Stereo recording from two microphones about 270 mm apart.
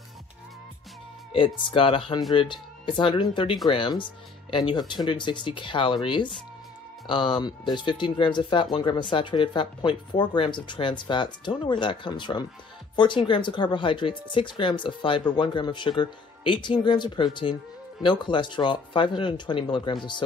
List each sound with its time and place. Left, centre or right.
1.3 s speech: centre